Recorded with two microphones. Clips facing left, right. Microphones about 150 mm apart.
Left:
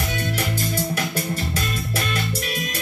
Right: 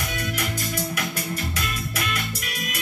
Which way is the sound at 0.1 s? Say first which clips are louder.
Left 3 dB; 30° left (ahead or behind).